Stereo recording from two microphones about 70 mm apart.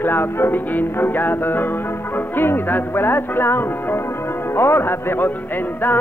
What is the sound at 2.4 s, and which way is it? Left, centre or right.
Music, left.